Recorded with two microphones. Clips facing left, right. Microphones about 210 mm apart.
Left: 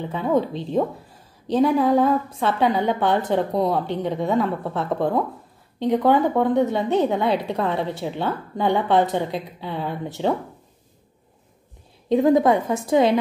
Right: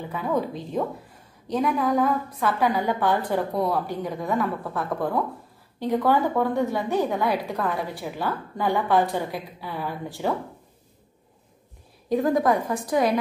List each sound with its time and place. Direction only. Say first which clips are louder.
0.0 s a woman's voice: left 5 dB; 25° left (ahead or behind)
12.1 s a woman's voice: left 5 dB; 25° left (ahead or behind)